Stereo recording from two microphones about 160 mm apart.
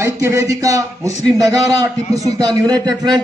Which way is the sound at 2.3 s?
25° right (ahead or behind).